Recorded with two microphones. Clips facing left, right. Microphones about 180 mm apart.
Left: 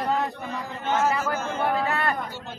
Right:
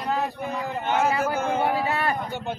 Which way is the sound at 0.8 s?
60° right (ahead or behind).